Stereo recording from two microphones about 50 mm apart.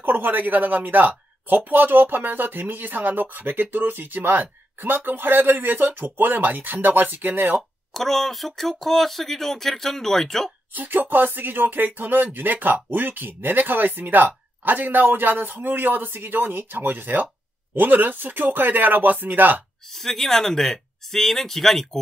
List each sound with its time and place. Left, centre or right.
0.0 s speech: right
7.9 s speech: centre
10.7 s speech: right
19.9 s speech: centre